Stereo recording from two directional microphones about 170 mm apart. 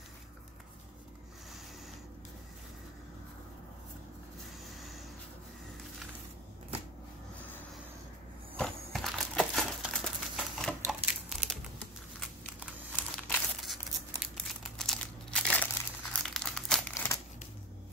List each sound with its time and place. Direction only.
4.7 s vehicle: centre (ahead or behind)
8.5 s a sound: centre (ahead or behind)
12.9 s crumpling: 5° left (ahead or behind)
16.9 s crumpling: 15° left (ahead or behind)